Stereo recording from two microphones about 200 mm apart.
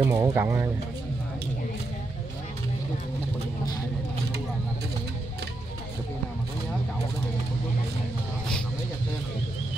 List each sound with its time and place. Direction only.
0.0 s speech: 10° right (ahead or behind)